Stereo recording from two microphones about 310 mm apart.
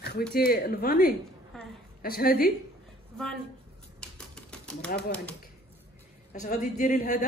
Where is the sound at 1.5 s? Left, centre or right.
Centre.